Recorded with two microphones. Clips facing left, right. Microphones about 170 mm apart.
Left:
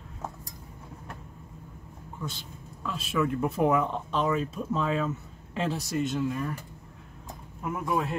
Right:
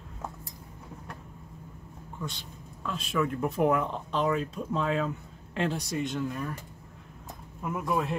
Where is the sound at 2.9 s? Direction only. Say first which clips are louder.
Left 1 dB; 5° left (ahead or behind).